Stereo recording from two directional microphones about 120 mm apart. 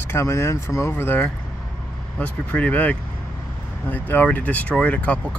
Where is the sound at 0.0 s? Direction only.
20° left (ahead or behind).